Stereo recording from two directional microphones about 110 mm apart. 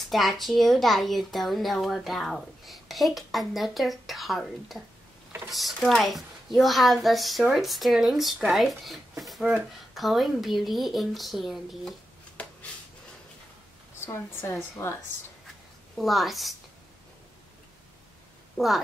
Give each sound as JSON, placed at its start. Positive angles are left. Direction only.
{"t": 0.1, "sound": "a child's voice", "side_deg": 0}
{"t": 12.4, "sound": "a sound", "side_deg": 10}
{"t": 14.0, "sound": "a woman's voice", "side_deg": 20}
{"t": 16.0, "sound": "a child's voice", "side_deg": 0}
{"t": 18.6, "sound": "a woman's voice", "side_deg": 5}